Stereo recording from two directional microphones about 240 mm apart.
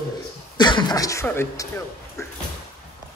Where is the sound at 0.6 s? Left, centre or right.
Centre.